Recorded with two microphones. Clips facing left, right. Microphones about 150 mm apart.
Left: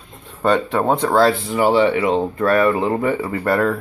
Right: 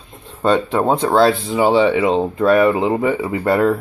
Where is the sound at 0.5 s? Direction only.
20° right (ahead or behind).